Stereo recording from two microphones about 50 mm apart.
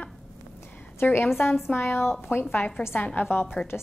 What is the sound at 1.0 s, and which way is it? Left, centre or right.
A woman's voice, left.